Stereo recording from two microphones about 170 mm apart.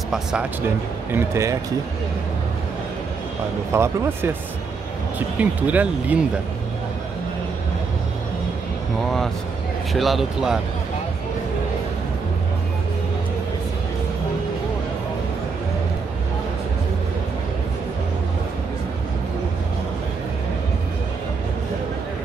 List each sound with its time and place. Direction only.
0.1 s speech: 5° right (ahead or behind)
1.1 s speech: 15° right (ahead or behind)
3.7 s speech: 15° right (ahead or behind)
5.4 s speech: 10° right (ahead or behind)
9.9 s speech: centre (ahead or behind)